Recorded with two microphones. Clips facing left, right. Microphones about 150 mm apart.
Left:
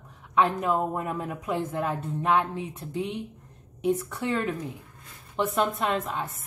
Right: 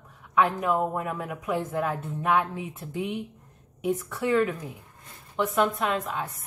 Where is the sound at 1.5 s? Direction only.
25° left (ahead or behind).